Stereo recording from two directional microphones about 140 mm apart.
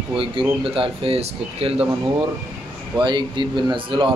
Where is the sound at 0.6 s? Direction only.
40° right (ahead or behind).